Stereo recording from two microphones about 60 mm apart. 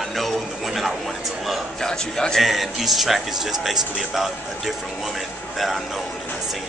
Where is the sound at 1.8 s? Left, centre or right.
Centre.